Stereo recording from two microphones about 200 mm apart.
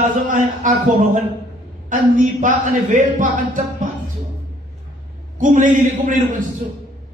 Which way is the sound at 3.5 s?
40° right (ahead or behind).